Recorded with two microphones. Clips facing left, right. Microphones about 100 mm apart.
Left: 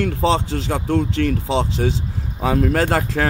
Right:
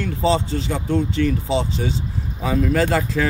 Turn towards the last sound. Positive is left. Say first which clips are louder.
# even
turn(degrees=60)  # may be behind; listen again after turning